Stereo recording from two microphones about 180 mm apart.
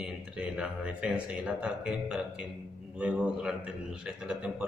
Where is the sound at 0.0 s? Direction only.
5° right (ahead or behind).